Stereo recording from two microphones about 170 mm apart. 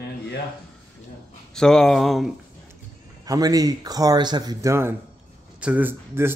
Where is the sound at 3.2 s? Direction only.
20° right (ahead or behind).